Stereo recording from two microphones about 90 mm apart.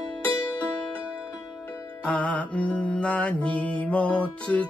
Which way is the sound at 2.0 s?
15° left (ahead or behind).